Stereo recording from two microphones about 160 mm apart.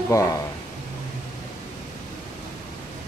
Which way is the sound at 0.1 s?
20° left (ahead or behind).